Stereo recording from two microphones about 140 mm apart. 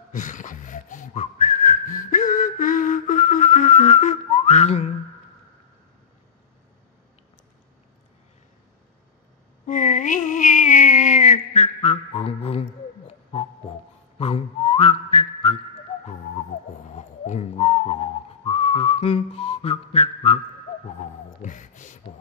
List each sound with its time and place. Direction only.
0.1 s whistling: 65° left (ahead or behind)
9.7 s a sound: 65° left (ahead or behind); by 15.6 s 45° left (ahead or behind)
16.9 s whistling: 55° left (ahead or behind)
21.4 s beatboxing: 65° left (ahead or behind)